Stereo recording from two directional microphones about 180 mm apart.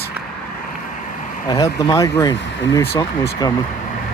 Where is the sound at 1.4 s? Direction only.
20° left (ahead or behind).